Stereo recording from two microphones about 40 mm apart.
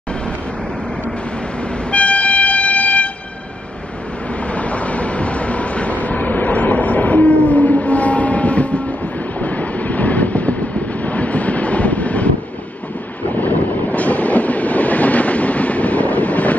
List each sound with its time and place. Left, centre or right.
1.9 s train: left
4.5 s train: left
9.4 s vehicle: left
13.3 s train: left